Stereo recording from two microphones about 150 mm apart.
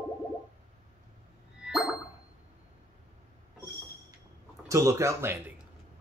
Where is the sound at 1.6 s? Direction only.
5° right (ahead or behind).